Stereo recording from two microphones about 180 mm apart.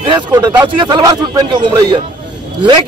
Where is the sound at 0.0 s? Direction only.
25° right (ahead or behind).